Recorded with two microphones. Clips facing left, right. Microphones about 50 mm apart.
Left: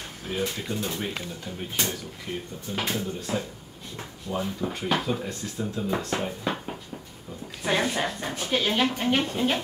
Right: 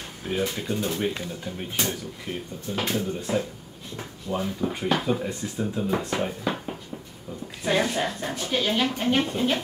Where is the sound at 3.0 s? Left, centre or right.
Centre.